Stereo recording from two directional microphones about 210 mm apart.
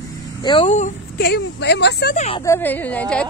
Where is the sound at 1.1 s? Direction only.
50° left (ahead or behind).